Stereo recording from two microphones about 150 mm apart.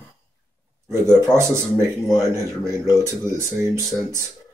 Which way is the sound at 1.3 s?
20° right (ahead or behind).